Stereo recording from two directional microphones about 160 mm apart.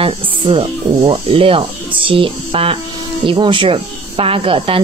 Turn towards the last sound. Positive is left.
turn(degrees=-35)  # may be behind; listen again after turning